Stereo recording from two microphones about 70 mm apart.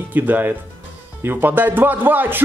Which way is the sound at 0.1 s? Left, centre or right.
Right.